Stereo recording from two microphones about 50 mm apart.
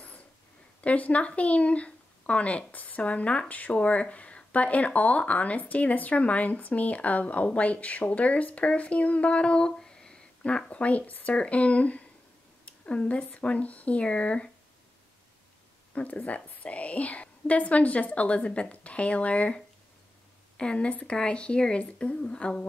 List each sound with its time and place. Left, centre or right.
0.7 s speech: left
15.9 s speech: left